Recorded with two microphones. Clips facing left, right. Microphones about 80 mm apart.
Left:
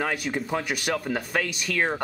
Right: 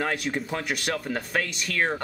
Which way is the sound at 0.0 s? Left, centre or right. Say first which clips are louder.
Even; centre.